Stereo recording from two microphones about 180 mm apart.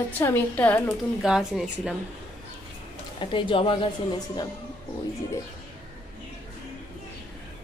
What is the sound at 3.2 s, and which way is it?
Speech, 30° left (ahead or behind).